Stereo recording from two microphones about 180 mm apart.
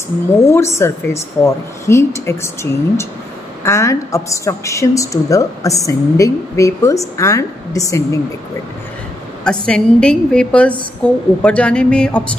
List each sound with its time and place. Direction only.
0.7 s a woman's voice: 15° left (ahead or behind)
9.4 s a woman's voice: 5° left (ahead or behind)